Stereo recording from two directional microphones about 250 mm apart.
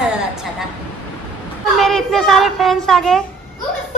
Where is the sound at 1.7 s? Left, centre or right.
Centre.